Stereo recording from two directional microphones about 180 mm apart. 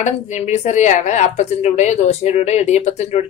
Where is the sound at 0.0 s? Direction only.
40° left (ahead or behind).